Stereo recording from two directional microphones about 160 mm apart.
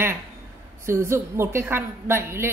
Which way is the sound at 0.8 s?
15° right (ahead or behind).